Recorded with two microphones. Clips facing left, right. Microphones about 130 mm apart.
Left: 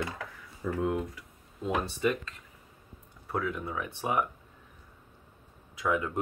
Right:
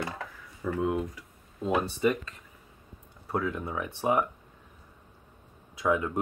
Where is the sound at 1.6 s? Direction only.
25° right (ahead or behind).